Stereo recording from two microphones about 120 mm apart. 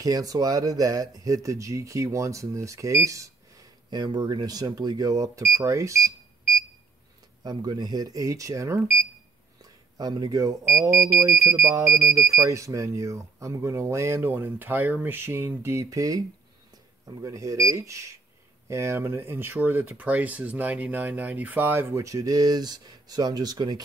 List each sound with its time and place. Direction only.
0.0 s speech: 30° right (ahead or behind)
7.4 s speech: 35° right (ahead or behind)
9.6 s a sound: 30° right (ahead or behind)
10.9 s speech: 25° right (ahead or behind)